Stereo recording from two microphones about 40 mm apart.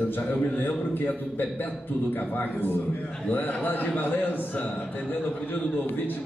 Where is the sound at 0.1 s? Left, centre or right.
Left.